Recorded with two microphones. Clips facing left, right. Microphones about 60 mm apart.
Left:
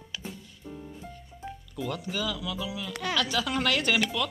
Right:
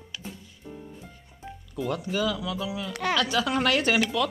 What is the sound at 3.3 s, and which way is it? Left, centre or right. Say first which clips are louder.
Speech: right 3 dB; right.